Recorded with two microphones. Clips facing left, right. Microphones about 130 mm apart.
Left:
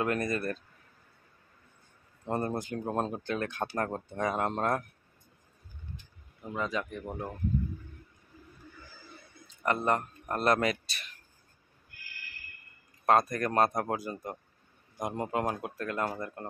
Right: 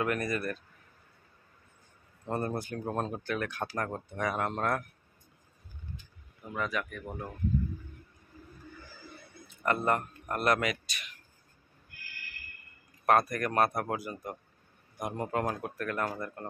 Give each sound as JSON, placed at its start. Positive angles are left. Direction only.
{"t": 0.0, "sound": "speech", "side_deg": 25}
{"t": 2.2, "sound": "speech", "side_deg": 20}
{"t": 6.4, "sound": "speech", "side_deg": 25}
{"t": 9.6, "sound": "speech", "side_deg": 15}
{"t": 13.0, "sound": "speech", "side_deg": 25}